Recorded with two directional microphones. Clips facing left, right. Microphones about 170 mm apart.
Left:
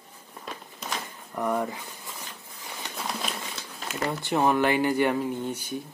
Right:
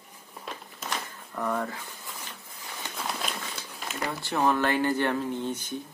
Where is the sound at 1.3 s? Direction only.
15° left (ahead or behind).